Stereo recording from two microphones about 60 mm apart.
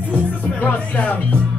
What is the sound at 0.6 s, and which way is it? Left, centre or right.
Music, left.